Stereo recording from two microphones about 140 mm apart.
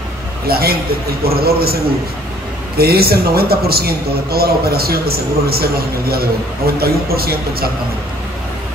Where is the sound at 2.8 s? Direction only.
90° right.